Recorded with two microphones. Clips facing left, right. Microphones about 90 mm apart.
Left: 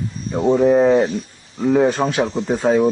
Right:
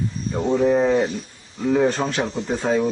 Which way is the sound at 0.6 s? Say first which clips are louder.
Left 4 dB; 15° left (ahead or behind).